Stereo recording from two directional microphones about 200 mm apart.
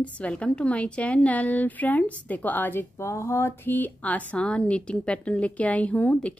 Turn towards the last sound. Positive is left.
turn(degrees=5)  # may be behind; listen again after turning